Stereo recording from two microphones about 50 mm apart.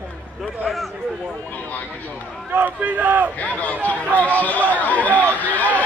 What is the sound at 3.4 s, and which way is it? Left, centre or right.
Speech, left.